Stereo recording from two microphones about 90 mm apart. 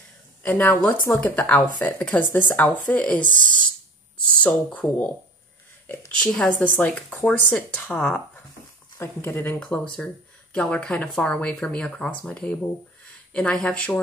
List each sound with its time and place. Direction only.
0.4 s speech: 15° left (ahead or behind)
6.1 s speech: 5° left (ahead or behind)